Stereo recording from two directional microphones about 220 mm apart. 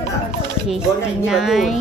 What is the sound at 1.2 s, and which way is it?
Speech, centre (ahead or behind).